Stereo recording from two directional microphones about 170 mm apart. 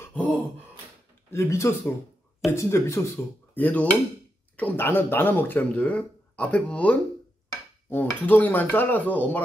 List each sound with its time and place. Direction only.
0.0 s beatboxing: 10° left (ahead or behind)
1.3 s speech: 15° left (ahead or behind)